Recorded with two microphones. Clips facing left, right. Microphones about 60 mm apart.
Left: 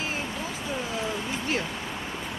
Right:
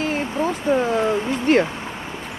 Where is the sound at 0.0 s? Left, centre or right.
Right.